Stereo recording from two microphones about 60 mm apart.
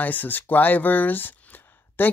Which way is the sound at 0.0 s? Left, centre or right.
Left.